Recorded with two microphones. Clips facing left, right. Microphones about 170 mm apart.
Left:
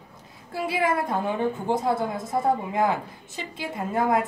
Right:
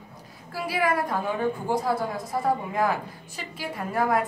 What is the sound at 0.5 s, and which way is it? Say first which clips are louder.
A woman's voice: left 1 dB; 25° left (ahead or behind).